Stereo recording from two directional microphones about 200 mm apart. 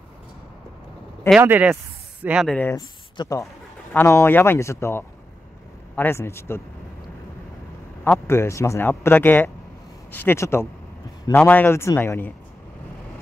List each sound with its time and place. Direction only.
1.3 s speech: 10° right (ahead or behind)
2.5 s speech: 10° left (ahead or behind)
8.0 s speech: 10° left (ahead or behind)